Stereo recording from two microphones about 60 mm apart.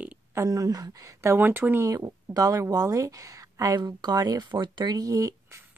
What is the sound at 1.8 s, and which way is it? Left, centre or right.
Speech, right.